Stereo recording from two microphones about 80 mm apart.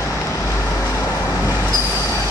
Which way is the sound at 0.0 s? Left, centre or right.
Left.